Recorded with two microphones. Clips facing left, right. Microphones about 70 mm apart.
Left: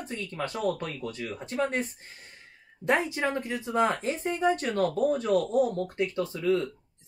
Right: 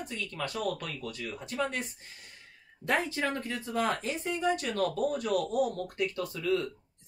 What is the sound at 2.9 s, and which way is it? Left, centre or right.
Speech, centre.